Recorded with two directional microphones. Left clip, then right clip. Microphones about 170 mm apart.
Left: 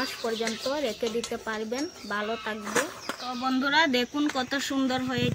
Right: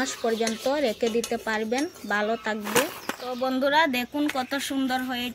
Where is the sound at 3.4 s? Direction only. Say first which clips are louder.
Right 2 dB; 35° right (ahead or behind).